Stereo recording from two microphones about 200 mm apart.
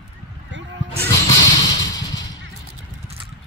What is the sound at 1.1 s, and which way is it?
Music, 20° left (ahead or behind).